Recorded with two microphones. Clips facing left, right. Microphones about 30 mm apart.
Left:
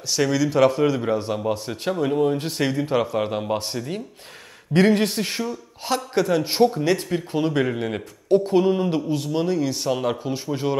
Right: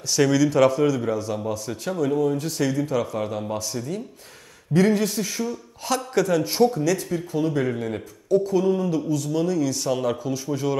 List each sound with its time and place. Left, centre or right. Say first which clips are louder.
0.1 s speech: right 2 dB; centre
1.1 s a man's voice: left 3 dB; left
5.9 s a man's voice: even; left